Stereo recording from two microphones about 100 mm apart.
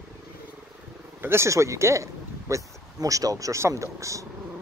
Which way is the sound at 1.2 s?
25° right (ahead or behind).